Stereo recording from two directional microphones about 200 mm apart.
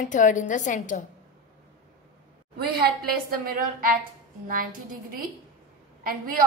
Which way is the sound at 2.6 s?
50° right (ahead or behind).